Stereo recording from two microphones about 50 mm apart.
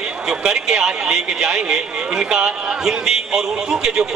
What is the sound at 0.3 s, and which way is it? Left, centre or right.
A man's voice, centre.